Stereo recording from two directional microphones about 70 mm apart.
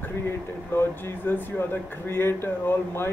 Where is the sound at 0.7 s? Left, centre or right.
Left.